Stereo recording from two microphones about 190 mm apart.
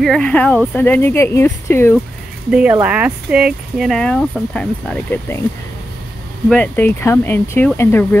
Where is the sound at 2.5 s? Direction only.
5° right (ahead or behind); by 5.4 s 10° left (ahead or behind).